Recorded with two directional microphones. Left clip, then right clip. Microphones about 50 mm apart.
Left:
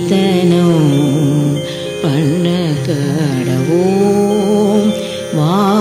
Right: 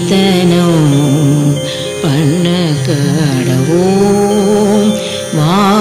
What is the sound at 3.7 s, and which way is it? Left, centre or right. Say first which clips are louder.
Music: right 2 dB; centre.